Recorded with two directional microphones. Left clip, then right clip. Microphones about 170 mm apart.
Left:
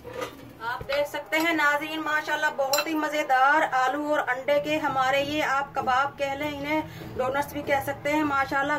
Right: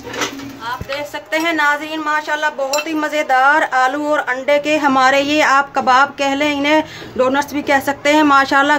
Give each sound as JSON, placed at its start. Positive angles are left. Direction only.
{"t": 0.8, "sound": "a woman's voice", "side_deg": -65}